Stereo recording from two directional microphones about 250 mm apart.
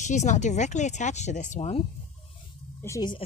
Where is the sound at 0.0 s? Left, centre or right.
Left.